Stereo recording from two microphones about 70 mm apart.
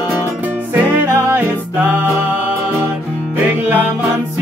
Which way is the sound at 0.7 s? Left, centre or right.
Right.